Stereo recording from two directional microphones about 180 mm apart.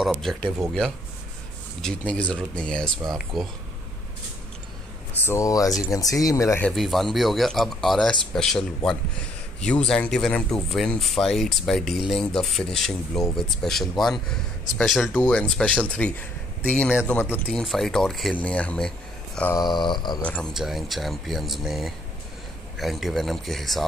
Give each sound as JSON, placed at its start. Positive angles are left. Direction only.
{"t": 0.0, "sound": "speech", "side_deg": 0}
{"t": 5.2, "sound": "speech", "side_deg": 15}
{"t": 6.7, "sound": "speech", "side_deg": 0}
{"t": 19.5, "sound": "speech", "side_deg": 25}
{"t": 20.2, "sound": "speech", "side_deg": 5}